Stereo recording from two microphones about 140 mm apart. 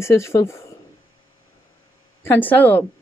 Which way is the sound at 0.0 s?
20° left (ahead or behind).